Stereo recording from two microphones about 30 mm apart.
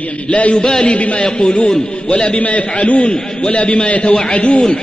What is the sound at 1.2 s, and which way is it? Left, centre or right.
Speech, left.